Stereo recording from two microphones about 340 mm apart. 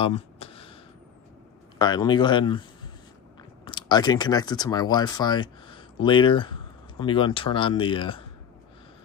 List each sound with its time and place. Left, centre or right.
0.0 s a sound: centre
1.8 s speech: centre
3.6 s speech: centre